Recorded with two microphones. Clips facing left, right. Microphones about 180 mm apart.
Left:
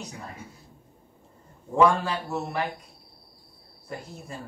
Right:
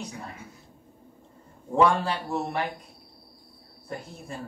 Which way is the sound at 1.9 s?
30° right (ahead or behind).